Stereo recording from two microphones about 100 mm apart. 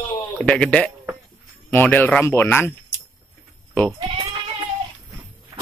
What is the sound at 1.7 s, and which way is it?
Speech, 20° left (ahead or behind).